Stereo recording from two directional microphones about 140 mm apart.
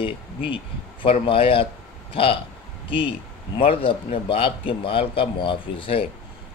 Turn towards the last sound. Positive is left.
turn(degrees=40)  # may be behind; listen again after turning